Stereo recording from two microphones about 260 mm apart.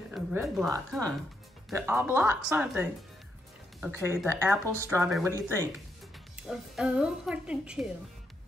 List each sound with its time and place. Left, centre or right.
0.1 s a woman's voice: centre